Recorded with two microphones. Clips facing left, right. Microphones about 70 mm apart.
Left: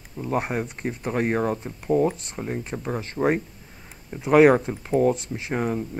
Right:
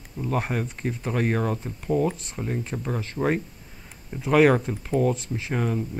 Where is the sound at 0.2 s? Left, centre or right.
Left.